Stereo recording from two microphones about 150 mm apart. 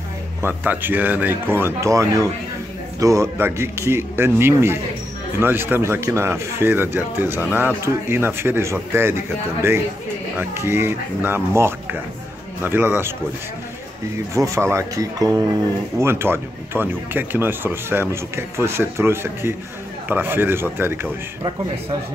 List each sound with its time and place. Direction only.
0.4 s speech: 15° right (ahead or behind)
14.3 s speech: 20° right (ahead or behind)